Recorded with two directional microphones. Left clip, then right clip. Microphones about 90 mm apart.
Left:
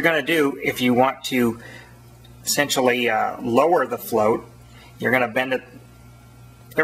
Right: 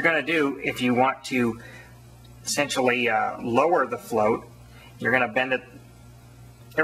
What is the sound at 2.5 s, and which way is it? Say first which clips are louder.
Speech: left 4 dB; 40° left (ahead or behind).